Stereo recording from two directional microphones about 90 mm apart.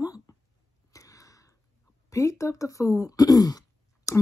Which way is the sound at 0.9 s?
40° left (ahead or behind).